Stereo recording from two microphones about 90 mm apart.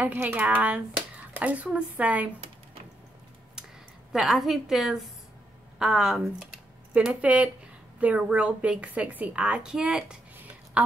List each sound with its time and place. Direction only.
0.0 s speech: 20° right (ahead or behind)
4.1 s a woman's voice: 5° right (ahead or behind)
7.0 s a woman's voice: 10° right (ahead or behind)